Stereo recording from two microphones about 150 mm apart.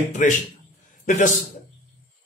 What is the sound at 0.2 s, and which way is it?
A man's voice, 60° left (ahead or behind).